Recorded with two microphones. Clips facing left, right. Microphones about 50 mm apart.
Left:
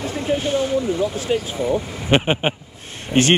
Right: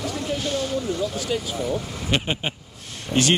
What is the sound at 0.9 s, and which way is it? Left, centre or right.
Speech, left.